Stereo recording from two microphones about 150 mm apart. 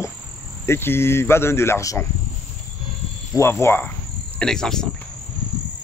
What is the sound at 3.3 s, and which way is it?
Speech, 15° left (ahead or behind).